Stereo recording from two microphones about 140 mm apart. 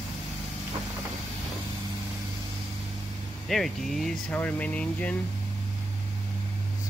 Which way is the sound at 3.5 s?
Centre (ahead or behind).